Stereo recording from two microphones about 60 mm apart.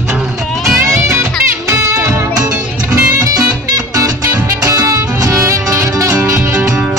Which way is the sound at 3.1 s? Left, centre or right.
Right.